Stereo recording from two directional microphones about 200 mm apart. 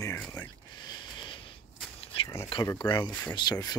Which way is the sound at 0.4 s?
20° left (ahead or behind).